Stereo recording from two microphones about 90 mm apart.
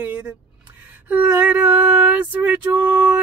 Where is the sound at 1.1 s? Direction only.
15° right (ahead or behind).